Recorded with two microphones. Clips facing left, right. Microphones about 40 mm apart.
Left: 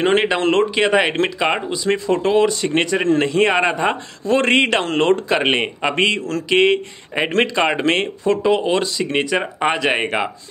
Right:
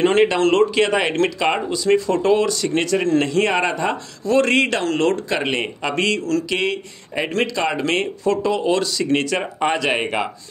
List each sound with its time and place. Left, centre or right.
0.0 s speech: centre
8.2 s speech: centre